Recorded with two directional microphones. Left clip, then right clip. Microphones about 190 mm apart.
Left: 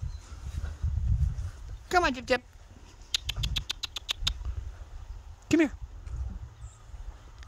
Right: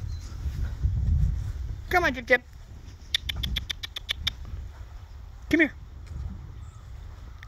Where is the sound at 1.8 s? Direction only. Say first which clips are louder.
Right 3 dB; 30° left (ahead or behind).